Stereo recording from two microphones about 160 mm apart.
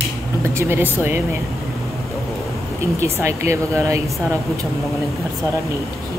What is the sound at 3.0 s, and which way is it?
Speech, 15° right (ahead or behind).